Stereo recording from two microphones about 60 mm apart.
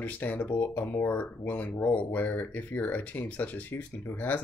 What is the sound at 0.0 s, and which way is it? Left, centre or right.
Speech, left.